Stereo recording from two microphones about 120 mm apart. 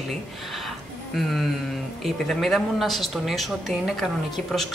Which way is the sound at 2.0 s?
Centre (ahead or behind).